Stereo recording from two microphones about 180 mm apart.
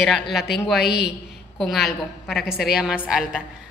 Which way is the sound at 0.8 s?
65° left (ahead or behind).